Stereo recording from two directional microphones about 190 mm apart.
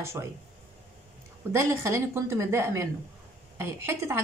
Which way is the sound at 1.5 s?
15° right (ahead or behind).